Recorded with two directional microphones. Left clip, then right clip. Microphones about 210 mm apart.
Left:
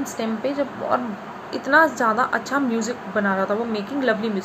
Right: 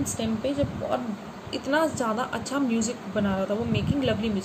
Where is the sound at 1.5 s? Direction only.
15° right (ahead or behind).